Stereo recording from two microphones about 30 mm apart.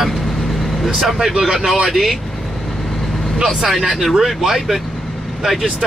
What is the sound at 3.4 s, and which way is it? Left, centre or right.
Speech, centre.